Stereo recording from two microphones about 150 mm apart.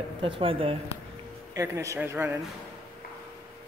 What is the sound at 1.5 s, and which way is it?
Speech, 20° right (ahead or behind).